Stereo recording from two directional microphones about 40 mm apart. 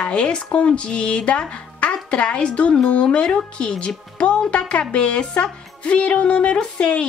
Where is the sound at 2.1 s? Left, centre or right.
Left.